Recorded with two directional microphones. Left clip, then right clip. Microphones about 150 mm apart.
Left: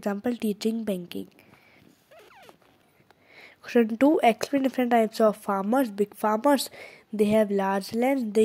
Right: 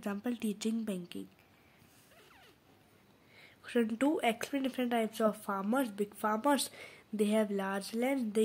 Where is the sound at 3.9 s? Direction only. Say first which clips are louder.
Left 13 dB; 45° left (ahead or behind).